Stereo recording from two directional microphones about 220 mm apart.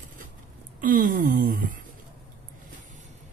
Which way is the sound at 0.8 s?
40° right (ahead or behind).